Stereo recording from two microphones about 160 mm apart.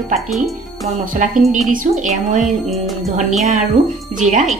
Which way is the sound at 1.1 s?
55° right (ahead or behind).